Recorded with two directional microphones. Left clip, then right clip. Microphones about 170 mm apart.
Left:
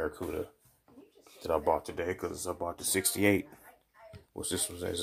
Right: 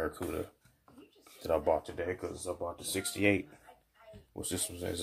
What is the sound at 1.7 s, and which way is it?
Speech, 30° left (ahead or behind).